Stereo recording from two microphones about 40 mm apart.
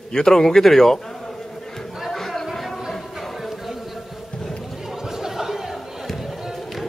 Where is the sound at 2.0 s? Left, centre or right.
Centre.